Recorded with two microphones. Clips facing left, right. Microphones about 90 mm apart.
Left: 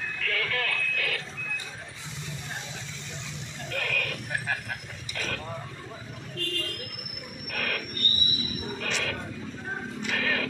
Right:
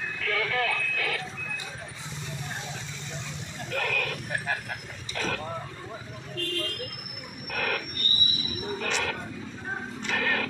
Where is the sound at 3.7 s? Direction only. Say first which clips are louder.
Right 2 dB; 10° right (ahead or behind).